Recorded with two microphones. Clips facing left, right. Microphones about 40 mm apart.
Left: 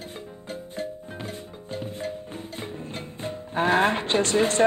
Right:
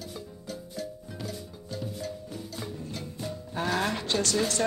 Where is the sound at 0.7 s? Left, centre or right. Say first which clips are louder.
Left 6 dB; left.